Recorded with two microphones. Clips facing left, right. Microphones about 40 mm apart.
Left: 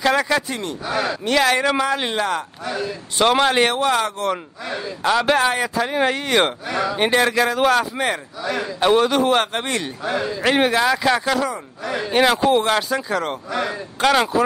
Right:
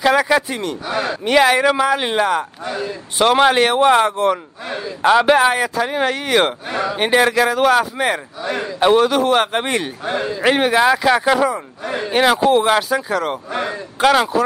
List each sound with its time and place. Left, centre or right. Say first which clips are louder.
0.0 s a man's voice: right 4 dB; centre
1.1 s a man's voice: right 5 dB; centre
3.7 s speech: right 6 dB; right
5.0 s a man's voice: right 5 dB; centre
9.5 s a man's voice: right 4 dB; right
12.0 s a man's voice: right 2 dB; centre